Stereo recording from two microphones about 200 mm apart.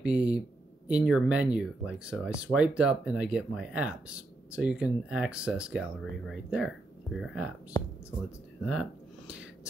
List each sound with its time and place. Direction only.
0.0 s speech: 5° right (ahead or behind)
7.7 s speech: 20° left (ahead or behind)